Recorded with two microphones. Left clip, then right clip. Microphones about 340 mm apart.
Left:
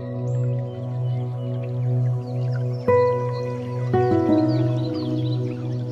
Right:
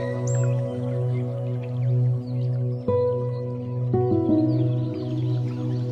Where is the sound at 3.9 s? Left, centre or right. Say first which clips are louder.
Left 3 dB; left.